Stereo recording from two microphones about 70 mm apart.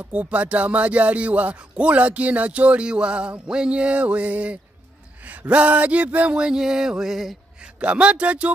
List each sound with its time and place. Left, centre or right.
0.0 s speech: right
5.2 s a sound: right; by 7.3 s centre
7.8 s speech: centre